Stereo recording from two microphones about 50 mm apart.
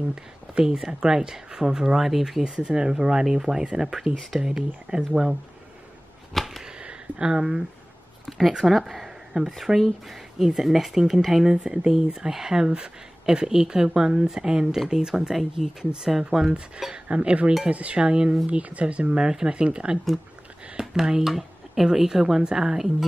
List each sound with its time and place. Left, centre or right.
0.1 s speech: centre
2.4 s speech: centre
4.2 s speech: centre
4.5 s speech: centre
6.3 s sniff: centre
6.8 s a sound: centre
8.3 s speech: centre
11.5 s speech: centre
15.8 s speech: centre
16.9 s speech: centre